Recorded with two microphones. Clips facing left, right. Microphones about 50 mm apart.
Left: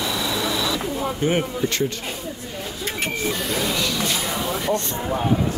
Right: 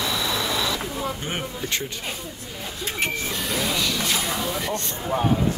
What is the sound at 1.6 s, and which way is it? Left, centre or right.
Speech, left.